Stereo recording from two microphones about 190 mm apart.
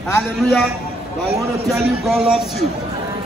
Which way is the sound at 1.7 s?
Centre (ahead or behind).